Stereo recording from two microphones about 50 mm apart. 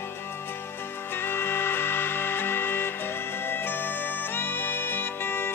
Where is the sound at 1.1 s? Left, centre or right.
Left.